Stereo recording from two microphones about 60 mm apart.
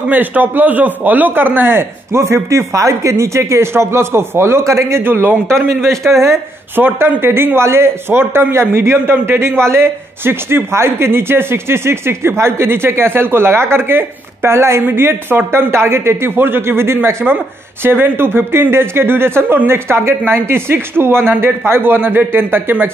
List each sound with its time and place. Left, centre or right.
0.1 s speech: right
5.0 s speech: right
6.0 s speech: right